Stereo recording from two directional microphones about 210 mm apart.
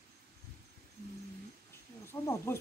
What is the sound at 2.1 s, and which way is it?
Speech, 10° left (ahead or behind).